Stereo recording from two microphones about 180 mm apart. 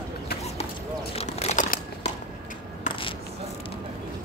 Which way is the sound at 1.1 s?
40° left (ahead or behind).